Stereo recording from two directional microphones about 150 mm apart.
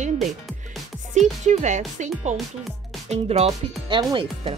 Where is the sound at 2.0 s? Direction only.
55° right (ahead or behind).